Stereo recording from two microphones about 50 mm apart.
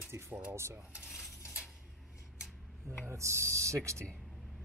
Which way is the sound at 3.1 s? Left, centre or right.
Right.